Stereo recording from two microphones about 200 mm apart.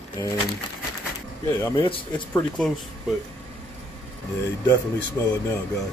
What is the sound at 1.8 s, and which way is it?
Speech, 25° left (ahead or behind).